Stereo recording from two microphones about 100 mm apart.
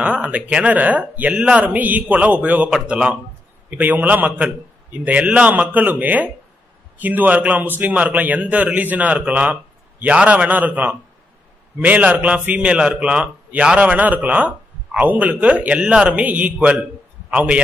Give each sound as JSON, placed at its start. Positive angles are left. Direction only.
{"t": 0.0, "sound": "a man's voice", "side_deg": -10}